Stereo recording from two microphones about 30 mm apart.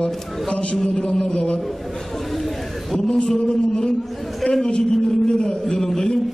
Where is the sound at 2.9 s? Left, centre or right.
Centre.